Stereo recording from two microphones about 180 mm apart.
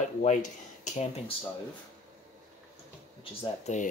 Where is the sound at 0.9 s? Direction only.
40° left (ahead or behind).